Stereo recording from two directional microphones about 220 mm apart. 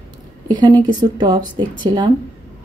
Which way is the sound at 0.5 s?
20° right (ahead or behind).